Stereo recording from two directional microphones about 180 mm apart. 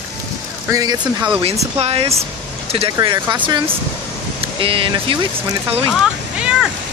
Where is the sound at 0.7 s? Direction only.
20° right (ahead or behind).